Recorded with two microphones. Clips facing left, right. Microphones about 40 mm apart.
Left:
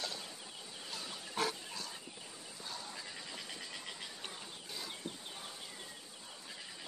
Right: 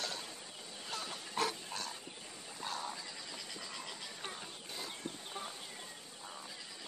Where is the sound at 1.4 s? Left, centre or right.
Right.